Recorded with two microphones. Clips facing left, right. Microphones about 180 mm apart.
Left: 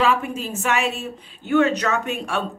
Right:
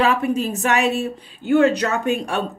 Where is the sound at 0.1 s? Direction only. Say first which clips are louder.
Right 4 dB; 40° right (ahead or behind).